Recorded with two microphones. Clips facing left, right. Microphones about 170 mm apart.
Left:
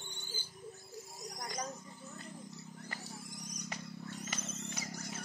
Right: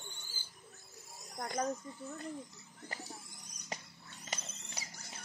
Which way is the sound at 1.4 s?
55° right (ahead or behind).